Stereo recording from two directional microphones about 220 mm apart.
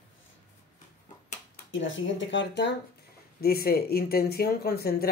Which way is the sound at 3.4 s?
45° left (ahead or behind).